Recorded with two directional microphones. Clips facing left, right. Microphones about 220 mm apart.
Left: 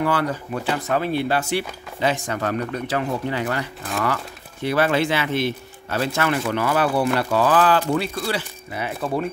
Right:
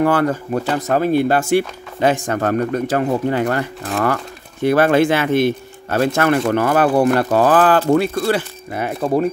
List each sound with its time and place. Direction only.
0.0 s speech: 50° right (ahead or behind)